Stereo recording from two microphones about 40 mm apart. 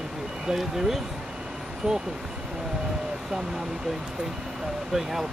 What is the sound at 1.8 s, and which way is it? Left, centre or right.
Speech, right.